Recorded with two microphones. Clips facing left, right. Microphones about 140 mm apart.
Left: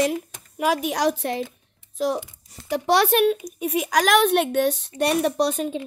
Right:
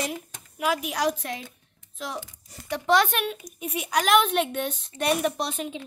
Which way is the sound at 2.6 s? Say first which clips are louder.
Left 2 dB; 35° left (ahead or behind).